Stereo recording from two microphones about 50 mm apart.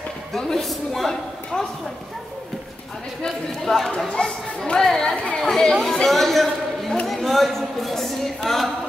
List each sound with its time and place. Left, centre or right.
0.3 s a woman's voice: centre
3.2 s a child's voice: centre
4.1 s a child's voice: centre
5.1 s chatter: left
5.4 s a man's voice: centre